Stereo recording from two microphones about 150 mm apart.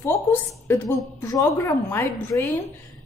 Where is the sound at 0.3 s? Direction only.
20° left (ahead or behind).